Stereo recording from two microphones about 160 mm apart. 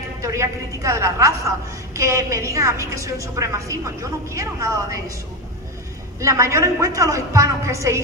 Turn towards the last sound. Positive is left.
turn(degrees=-20)  # may be behind; listen again after turning